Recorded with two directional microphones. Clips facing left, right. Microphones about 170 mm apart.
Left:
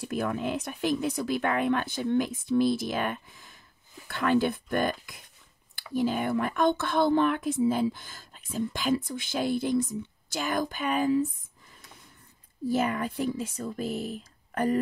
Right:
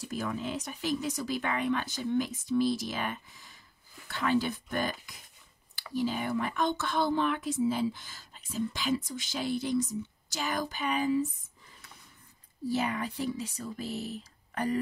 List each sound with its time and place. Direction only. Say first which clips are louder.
0.0 s speech: left 5 dB; 60° left (ahead or behind)
12.6 s speech: left 4 dB; 50° left (ahead or behind)